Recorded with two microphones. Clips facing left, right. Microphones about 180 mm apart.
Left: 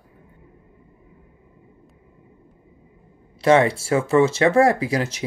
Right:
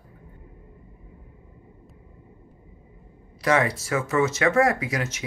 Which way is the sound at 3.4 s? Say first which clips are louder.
Left 6 dB; 30° left (ahead or behind).